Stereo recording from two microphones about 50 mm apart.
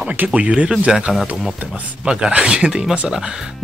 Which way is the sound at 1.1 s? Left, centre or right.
Centre.